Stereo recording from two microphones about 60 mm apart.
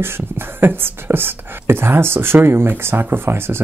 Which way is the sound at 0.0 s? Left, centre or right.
Right.